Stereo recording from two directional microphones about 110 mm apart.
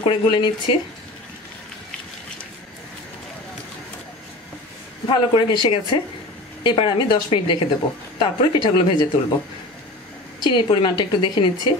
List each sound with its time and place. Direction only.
0.0 s a woman's voice: 50° left (ahead or behind)
5.0 s a woman's voice: 50° left (ahead or behind)
10.5 s a woman's voice: 45° left (ahead or behind)